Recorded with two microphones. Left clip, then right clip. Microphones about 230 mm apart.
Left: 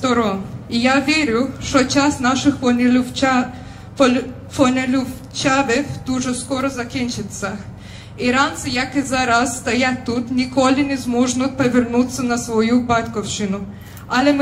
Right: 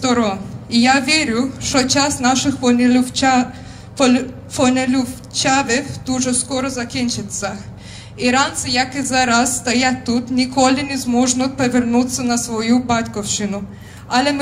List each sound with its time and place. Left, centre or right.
0.0 s speech: right